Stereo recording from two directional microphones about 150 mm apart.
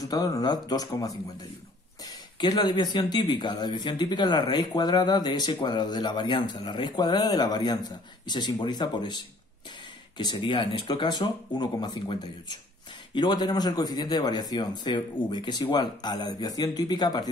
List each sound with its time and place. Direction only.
0.0 s speech: 25° left (ahead or behind)
2.4 s speech: 30° left (ahead or behind)